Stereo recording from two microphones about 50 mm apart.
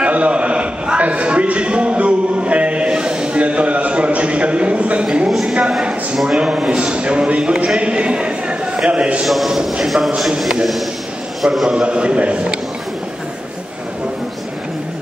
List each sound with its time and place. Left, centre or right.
0.0 s a sound: right
5.3 s a sound: centre
6.2 s a man's voice: centre
9.2 s a man's voice: centre
9.5 s speech: centre
11.5 s speech: centre
11.8 s a man's voice: right